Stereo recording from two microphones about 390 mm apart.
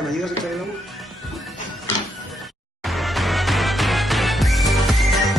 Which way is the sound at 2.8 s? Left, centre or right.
Centre.